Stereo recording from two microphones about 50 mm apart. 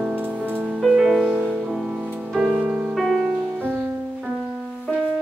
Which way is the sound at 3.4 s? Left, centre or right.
Right.